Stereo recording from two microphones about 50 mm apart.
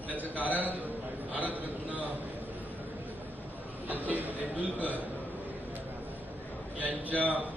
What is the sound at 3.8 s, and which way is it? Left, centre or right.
A man's voice, right.